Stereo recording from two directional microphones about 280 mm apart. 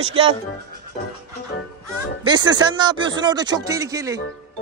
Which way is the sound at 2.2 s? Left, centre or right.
Centre.